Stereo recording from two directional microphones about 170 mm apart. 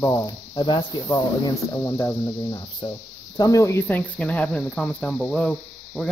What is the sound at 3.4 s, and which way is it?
Speech, 20° left (ahead or behind).